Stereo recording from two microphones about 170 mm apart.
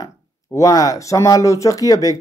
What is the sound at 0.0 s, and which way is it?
Speech, 20° left (ahead or behind).